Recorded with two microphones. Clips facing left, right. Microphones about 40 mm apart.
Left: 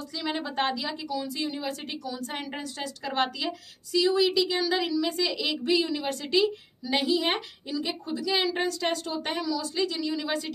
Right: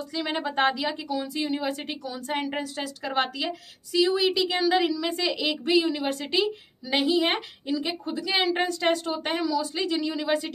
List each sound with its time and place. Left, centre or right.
0.1 s a woman's voice: right